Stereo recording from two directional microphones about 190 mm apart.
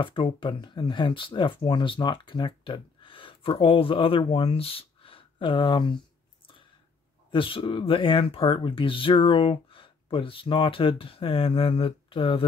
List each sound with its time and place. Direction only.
0.0 s speech: 25° left (ahead or behind)
7.2 s speech: 25° left (ahead or behind)